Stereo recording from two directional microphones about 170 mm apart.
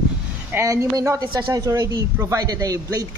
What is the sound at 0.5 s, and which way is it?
A woman's voice, 20° right (ahead or behind).